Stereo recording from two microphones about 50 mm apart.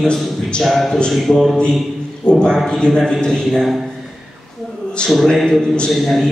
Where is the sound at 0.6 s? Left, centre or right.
Centre.